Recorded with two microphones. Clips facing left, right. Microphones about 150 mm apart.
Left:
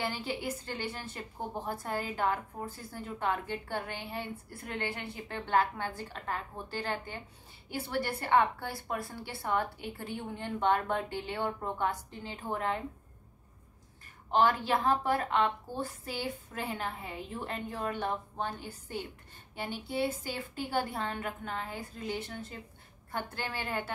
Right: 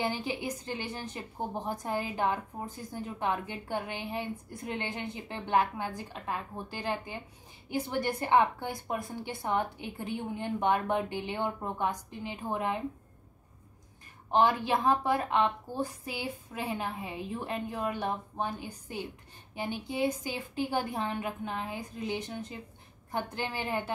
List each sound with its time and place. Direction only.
0.0 s a woman's voice: 20° right (ahead or behind)
14.3 s a woman's voice: 15° right (ahead or behind)